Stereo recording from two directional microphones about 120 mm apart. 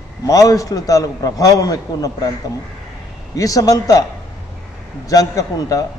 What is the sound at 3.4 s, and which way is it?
Speech, 30° left (ahead or behind).